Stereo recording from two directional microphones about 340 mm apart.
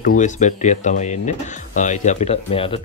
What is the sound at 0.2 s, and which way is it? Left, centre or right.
Speech, left.